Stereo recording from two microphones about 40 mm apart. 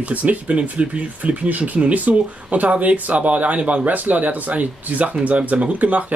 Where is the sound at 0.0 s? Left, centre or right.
Right.